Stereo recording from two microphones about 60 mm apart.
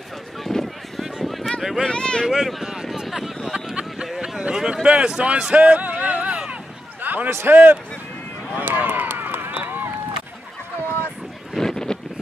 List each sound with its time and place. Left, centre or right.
0.4 s a sound: centre
1.8 s speech: centre
2.2 s speech: centre
3.4 s a sound: centre
4.8 s speech: centre
7.0 s basketball bounce: right
7.2 s a man's voice: right
8.5 s run: right
11.5 s wind noise: centre